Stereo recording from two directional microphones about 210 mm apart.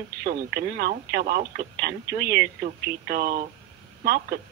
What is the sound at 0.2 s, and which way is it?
Speech, 45° right (ahead or behind).